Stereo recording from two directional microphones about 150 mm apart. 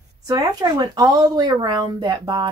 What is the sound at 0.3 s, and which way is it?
Speech, 25° right (ahead or behind).